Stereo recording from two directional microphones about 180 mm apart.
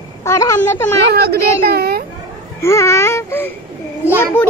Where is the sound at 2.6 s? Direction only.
15° left (ahead or behind).